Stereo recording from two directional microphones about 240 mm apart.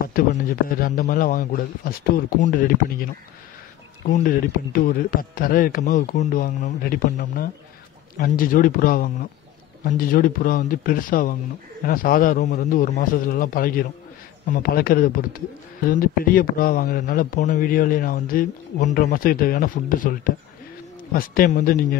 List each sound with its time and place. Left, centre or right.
0.1 s speech: left
4.1 s speech: left